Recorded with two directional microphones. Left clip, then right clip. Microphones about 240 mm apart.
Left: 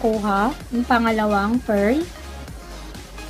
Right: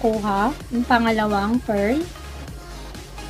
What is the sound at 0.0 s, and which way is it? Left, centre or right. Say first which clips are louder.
A woman's voice: left 1 dB; centre.